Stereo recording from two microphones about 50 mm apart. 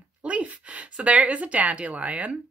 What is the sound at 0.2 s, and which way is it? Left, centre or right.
Speech, right.